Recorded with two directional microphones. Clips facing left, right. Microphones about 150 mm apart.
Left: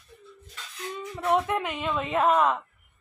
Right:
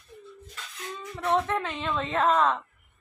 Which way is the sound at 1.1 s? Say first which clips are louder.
Left 1 dB; 10° left (ahead or behind).